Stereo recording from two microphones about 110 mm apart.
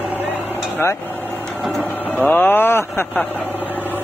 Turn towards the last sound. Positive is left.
turn(degrees=20)  # may be behind; listen again after turning